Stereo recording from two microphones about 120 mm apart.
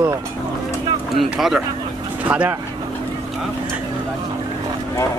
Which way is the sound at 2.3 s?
15° right (ahead or behind).